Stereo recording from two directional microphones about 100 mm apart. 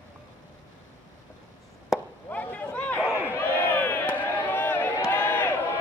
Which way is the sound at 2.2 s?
15° left (ahead or behind).